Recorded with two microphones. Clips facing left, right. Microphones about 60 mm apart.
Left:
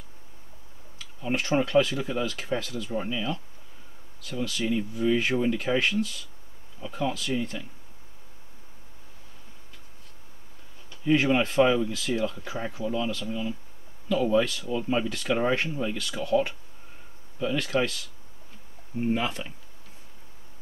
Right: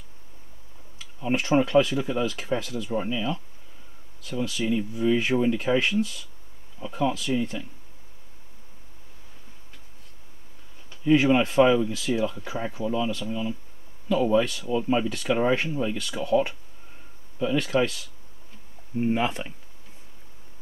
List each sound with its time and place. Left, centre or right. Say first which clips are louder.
1.3 s speech: right 2 dB; centre
3.0 s speech: right 2 dB; centre
4.3 s speech: right 2 dB; centre
11.1 s speech: right 3 dB; centre